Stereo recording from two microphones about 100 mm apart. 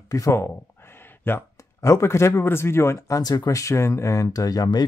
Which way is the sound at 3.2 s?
40° left (ahead or behind).